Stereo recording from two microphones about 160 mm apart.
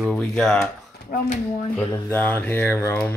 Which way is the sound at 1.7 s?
10° left (ahead or behind).